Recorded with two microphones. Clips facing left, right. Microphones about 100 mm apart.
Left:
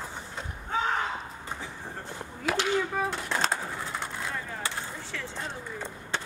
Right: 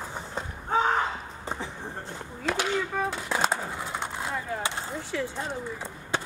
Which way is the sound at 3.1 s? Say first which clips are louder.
Right 2 dB; 5° right (ahead or behind).